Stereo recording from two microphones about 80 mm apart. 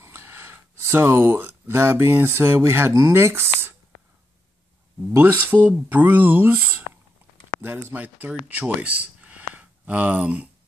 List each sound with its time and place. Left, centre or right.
0.0 s speech: right
5.1 s speech: right